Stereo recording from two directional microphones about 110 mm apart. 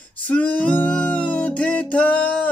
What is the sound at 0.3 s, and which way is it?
Music, 15° left (ahead or behind).